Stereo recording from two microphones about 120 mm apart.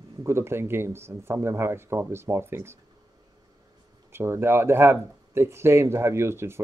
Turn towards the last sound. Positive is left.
turn(degrees=-20)  # may be behind; listen again after turning